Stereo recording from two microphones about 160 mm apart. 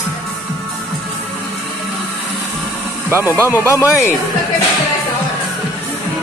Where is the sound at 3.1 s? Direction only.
15° right (ahead or behind).